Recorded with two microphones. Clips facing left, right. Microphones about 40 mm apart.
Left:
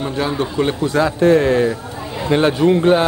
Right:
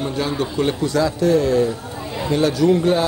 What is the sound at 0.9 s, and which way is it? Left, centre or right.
A man's voice, left.